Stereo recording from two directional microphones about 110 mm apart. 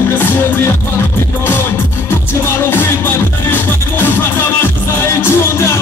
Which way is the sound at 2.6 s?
20° left (ahead or behind).